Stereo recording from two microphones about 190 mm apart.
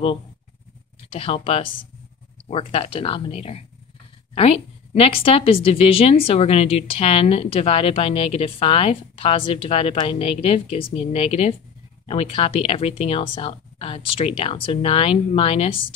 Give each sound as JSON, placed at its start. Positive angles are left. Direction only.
{"t": 1.1, "sound": "a woman's voice", "side_deg": 30}